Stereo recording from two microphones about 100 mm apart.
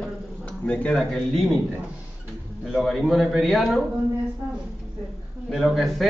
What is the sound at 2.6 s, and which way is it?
A man's voice, centre (ahead or behind).